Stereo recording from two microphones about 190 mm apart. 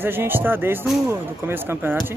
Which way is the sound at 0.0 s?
10° right (ahead or behind).